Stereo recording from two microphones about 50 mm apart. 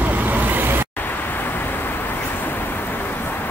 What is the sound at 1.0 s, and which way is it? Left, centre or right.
Vehicle, left.